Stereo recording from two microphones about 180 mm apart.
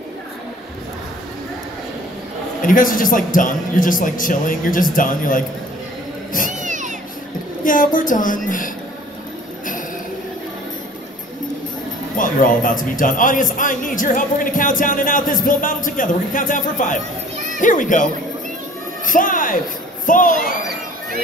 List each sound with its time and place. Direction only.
2.6 s a man's voice: 50° left (ahead or behind)
6.6 s a sound: 45° right (ahead or behind)
7.6 s a man's voice: 50° left (ahead or behind)
12.2 s a man's voice: 50° left (ahead or behind)